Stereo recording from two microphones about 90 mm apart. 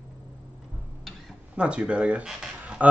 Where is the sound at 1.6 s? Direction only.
10° right (ahead or behind).